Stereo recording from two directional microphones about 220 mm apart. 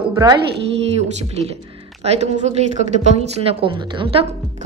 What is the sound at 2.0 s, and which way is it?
A woman's voice, 30° right (ahead or behind).